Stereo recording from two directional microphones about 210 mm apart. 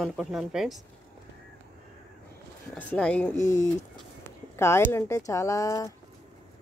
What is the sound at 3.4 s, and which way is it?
Speech, 35° left (ahead or behind).